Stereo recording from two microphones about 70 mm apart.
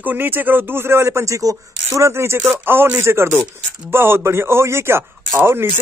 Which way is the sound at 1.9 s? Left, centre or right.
Right.